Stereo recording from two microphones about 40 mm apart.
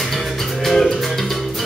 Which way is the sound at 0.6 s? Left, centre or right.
Centre.